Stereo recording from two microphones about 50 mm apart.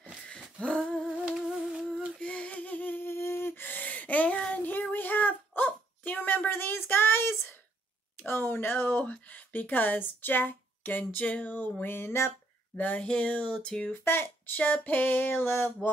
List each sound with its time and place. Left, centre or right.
0.6 s female singing: left
1.3 s music: centre
2.1 s humming: left
3.1 s female singing: left
4.6 s dog: left
8.2 s a sound: left
9.3 s speech: left
11.8 s mantra: left
12.7 s speech: left
14.0 s speech: left
14.6 s speech: left
15.0 s mantra: left